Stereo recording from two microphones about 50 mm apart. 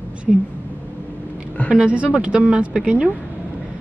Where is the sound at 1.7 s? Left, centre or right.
Right.